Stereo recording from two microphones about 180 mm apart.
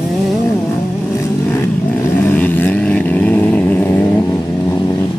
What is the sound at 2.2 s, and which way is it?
Vehicle, 10° left (ahead or behind).